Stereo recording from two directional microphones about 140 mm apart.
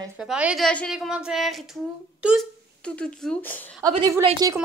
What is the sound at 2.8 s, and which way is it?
Speech, 5° left (ahead or behind).